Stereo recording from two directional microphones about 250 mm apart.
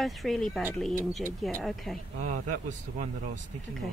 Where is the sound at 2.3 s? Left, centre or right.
Right.